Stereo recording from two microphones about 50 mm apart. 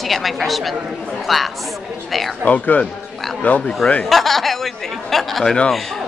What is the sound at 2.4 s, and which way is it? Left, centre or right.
A man's voice, left.